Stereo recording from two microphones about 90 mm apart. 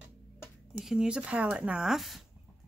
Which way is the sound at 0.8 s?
10° right (ahead or behind).